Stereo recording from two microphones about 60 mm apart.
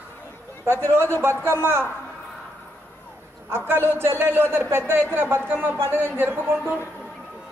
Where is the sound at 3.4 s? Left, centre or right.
Right.